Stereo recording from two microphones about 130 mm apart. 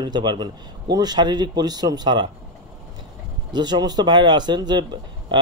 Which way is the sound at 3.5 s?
35° right (ahead or behind).